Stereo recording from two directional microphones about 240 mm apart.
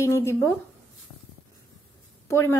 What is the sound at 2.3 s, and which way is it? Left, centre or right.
Speech, centre.